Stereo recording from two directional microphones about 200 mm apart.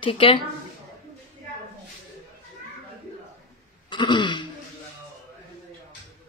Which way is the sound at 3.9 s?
25° left (ahead or behind).